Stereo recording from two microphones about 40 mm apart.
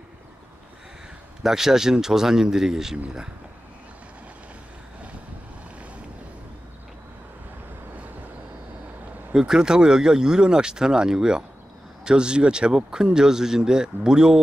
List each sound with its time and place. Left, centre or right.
1.4 s speech: centre
9.3 s speech: centre